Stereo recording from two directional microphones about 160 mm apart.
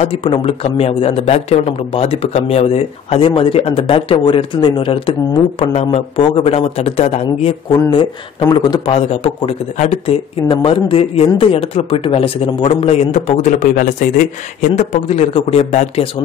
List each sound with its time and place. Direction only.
0.0 s speech: 35° left (ahead or behind)
8.9 s speech: 35° left (ahead or behind)